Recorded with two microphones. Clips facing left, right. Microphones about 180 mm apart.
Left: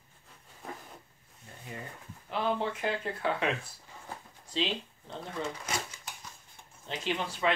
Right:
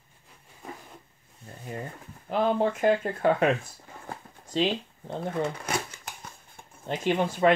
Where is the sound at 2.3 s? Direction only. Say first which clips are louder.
Right 7 dB; 45° right (ahead or behind).